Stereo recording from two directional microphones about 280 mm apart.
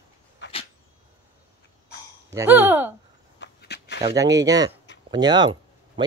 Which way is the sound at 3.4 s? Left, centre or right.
Left.